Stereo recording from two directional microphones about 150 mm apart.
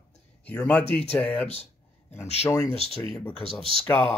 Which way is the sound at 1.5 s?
45° left (ahead or behind).